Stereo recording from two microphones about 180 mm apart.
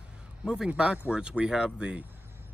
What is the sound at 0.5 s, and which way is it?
Speech, 5° right (ahead or behind).